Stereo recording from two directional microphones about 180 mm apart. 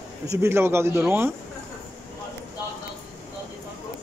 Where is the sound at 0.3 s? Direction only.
15° right (ahead or behind).